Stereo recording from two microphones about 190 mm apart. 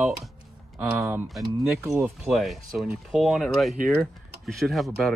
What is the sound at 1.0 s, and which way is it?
Speech, 5° right (ahead or behind).